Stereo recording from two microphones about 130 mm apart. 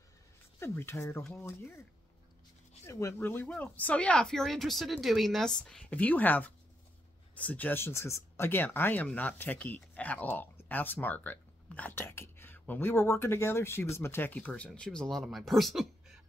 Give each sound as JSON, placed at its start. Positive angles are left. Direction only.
{"t": 0.6, "sound": "speech", "side_deg": 20}
{"t": 2.8, "sound": "speech", "side_deg": 25}